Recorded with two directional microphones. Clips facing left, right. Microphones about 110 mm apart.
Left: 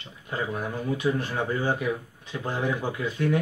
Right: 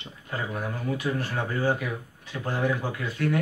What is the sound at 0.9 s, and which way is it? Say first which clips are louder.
Speech: left 4 dB; 20° left (ahead or behind).